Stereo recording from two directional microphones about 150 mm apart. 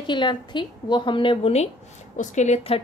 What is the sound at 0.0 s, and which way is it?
A woman's voice, 30° left (ahead or behind).